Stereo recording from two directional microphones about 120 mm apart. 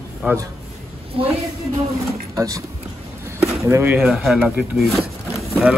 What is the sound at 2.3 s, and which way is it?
Speech, 30° right (ahead or behind).